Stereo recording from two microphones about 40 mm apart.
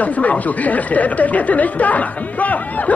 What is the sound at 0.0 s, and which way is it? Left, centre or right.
Speech, left.